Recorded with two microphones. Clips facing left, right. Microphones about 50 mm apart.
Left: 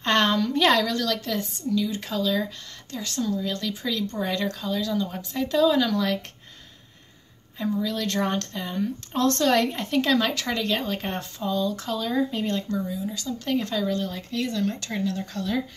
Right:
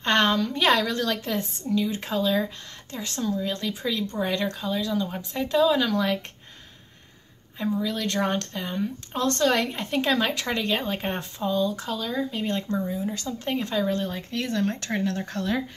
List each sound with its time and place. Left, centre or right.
0.0 s a woman's voice: centre
0.9 s speech: right
7.5 s speech: centre
12.5 s speech: right
13.6 s speech: centre
13.8 s speech: right